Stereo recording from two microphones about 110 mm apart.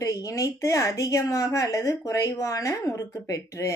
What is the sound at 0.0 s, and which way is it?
A woman's voice, 30° left (ahead or behind).